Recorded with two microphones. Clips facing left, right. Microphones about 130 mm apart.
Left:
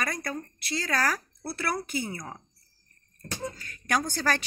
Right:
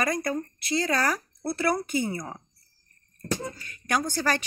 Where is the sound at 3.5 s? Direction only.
15° right (ahead or behind).